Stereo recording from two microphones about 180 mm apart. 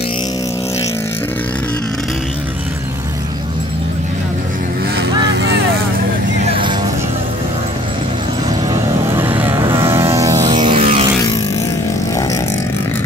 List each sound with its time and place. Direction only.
4.9 s vehicle: 70° right (ahead or behind)
6.5 s vehicle: 25° right (ahead or behind)
8.6 s vehicle: 15° right (ahead or behind)
9.8 s music: 15° right (ahead or behind); by 11.1 s 30° right (ahead or behind)